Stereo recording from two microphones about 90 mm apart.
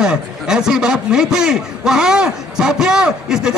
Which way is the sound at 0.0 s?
10° right (ahead or behind).